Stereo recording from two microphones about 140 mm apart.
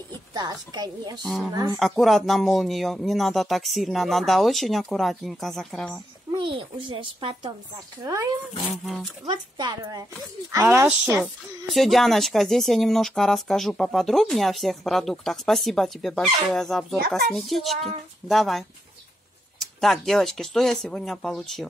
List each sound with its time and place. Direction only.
0.3 s a woman's voice: 30° right (ahead or behind)
1.2 s speech: centre (ahead or behind)
6.3 s speech: 35° right (ahead or behind)
8.0 s a woman's voice: 25° right (ahead or behind)
11.7 s speech: centre (ahead or behind)